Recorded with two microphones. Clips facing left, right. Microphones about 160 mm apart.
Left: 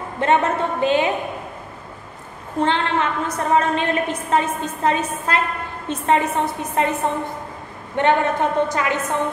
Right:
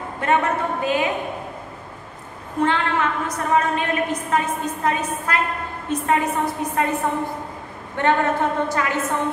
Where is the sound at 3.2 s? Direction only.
30° left (ahead or behind).